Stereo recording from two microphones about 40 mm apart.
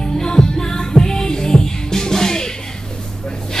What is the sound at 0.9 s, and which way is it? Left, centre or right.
Music, centre.